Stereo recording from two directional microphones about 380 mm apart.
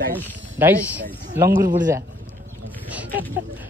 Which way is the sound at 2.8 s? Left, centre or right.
Centre.